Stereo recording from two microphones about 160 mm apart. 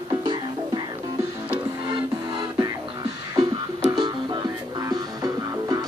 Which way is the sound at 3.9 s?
25° right (ahead or behind).